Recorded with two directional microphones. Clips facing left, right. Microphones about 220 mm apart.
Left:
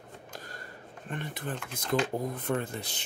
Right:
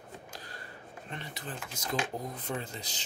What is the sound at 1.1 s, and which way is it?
Speech, 50° left (ahead or behind).